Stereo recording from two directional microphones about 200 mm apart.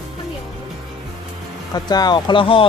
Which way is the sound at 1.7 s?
20° left (ahead or behind).